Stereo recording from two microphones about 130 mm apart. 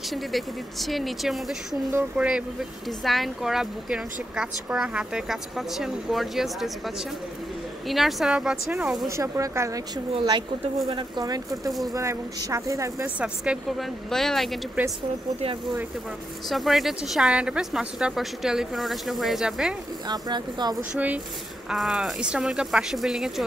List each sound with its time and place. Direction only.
0.1 s speech: centre (ahead or behind)
7.9 s speech: centre (ahead or behind)
9.1 s speech: 25° right (ahead or behind)
10.1 s speech: 35° right (ahead or behind)
13.0 s speech: 10° right (ahead or behind)
16.4 s speech: centre (ahead or behind)
20.1 s speech: 35° right (ahead or behind)
20.9 s speech: 10° right (ahead or behind)